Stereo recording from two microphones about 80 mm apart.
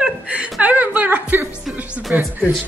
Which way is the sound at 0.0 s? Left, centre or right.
Centre.